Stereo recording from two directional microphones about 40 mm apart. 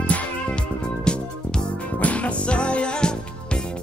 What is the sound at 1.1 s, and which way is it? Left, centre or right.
Music, left.